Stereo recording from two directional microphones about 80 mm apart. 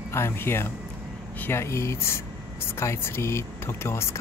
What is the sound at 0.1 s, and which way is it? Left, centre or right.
Speech, left.